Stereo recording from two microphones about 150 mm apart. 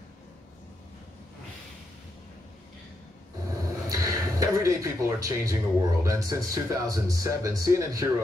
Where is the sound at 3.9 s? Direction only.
20° right (ahead or behind).